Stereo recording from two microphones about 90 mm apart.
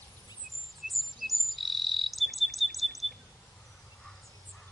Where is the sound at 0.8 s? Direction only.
Centre (ahead or behind).